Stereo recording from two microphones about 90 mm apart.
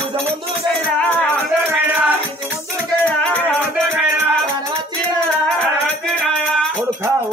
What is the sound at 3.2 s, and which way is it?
Music, 10° left (ahead or behind).